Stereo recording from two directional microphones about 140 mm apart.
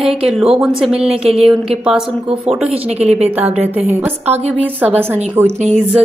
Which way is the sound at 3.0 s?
10° right (ahead or behind).